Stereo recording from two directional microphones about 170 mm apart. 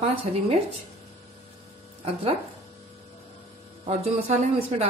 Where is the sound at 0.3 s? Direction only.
45° right (ahead or behind).